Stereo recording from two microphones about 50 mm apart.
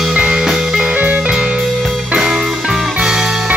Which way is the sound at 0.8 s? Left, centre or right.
Right.